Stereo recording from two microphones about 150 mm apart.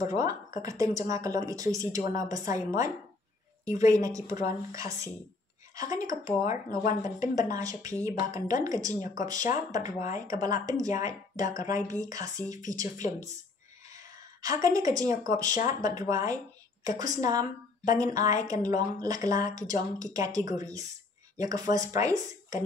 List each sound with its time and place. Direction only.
0.0 s speech: 25° right (ahead or behind)
13.9 s a woman's voice: 20° right (ahead or behind)